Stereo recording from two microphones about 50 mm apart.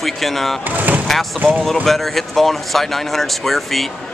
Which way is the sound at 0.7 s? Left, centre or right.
Right.